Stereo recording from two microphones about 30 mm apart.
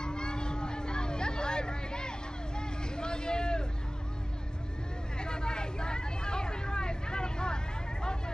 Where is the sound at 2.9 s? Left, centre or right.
Left.